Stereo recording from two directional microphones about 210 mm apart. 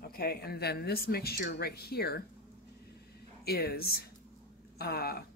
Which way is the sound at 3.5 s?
50° left (ahead or behind).